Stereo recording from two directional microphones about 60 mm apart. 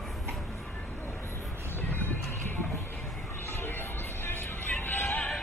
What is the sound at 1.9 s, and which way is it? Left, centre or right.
Music, left.